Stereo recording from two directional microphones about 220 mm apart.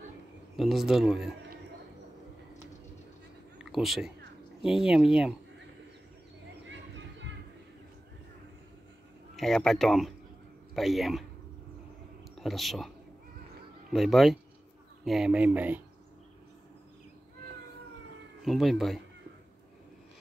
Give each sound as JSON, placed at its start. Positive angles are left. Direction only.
{"t": 0.6, "sound": "speech", "side_deg": 0}
{"t": 3.5, "sound": "speech", "side_deg": 0}
{"t": 6.7, "sound": "a sound", "side_deg": -55}
{"t": 9.4, "sound": "speech", "side_deg": 0}
{"t": 12.4, "sound": "speech", "side_deg": 0}
{"t": 13.9, "sound": "speech", "side_deg": 0}
{"t": 18.4, "sound": "speech", "side_deg": 0}